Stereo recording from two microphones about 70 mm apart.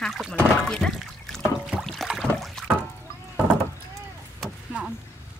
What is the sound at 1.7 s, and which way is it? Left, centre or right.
Boat, centre.